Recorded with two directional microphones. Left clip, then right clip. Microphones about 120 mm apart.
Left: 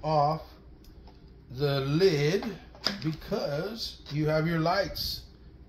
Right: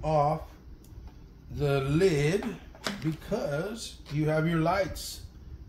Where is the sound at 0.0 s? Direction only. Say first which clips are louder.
Even; 10° left (ahead or behind).